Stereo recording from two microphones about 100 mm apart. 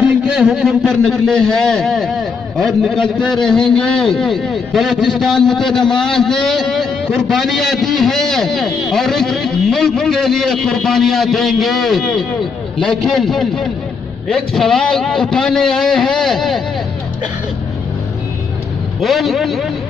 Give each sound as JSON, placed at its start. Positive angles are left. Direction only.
{"t": 0.0, "sound": "a man's voice", "side_deg": -10}
{"t": 3.0, "sound": "a man's voice", "side_deg": 50}
{"t": 3.3, "sound": "a man's voice", "side_deg": 5}
{"t": 18.9, "sound": "a man's voice", "side_deg": 0}